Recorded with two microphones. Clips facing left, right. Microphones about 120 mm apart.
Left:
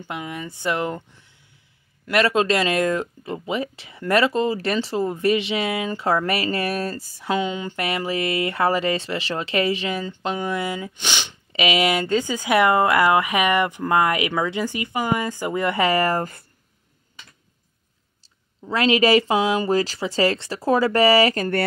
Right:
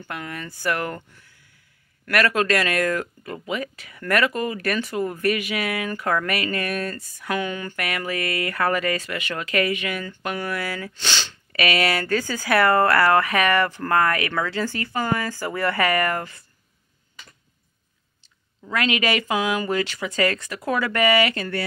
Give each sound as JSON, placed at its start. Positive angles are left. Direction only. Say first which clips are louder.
{"t": 0.0, "sound": "speech", "louder": "left 2 dB", "side_deg": 20}
{"t": 18.7, "sound": "speech", "louder": "left 6 dB", "side_deg": 30}